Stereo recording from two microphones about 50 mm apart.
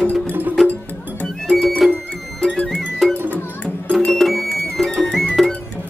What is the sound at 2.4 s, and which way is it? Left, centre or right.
Music, centre.